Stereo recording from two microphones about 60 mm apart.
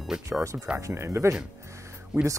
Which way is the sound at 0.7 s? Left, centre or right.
Right.